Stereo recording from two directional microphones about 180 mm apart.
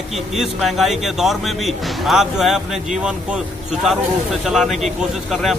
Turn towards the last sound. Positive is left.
turn(degrees=0)  # may be behind; listen again after turning